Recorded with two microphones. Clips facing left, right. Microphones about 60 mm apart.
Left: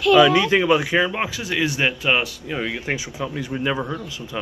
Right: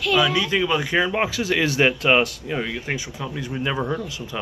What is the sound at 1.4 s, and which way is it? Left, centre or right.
Speech, centre.